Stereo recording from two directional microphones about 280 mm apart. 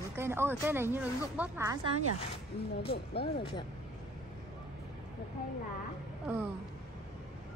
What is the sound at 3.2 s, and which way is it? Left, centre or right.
Speech, centre.